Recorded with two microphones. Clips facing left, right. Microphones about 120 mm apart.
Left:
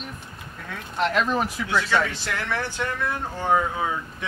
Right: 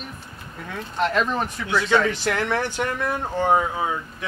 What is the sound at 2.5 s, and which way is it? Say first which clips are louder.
Speech: right 3 dB; 15° right (ahead or behind).